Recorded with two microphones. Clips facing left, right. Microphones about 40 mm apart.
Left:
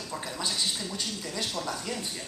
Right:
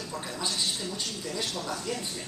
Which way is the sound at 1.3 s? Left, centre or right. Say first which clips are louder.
Even; centre.